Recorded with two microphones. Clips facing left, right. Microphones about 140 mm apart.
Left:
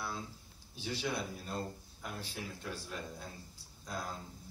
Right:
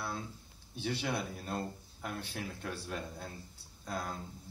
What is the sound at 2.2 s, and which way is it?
Speech, 60° right (ahead or behind).